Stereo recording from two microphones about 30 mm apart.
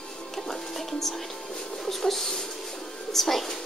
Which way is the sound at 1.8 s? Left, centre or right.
Centre.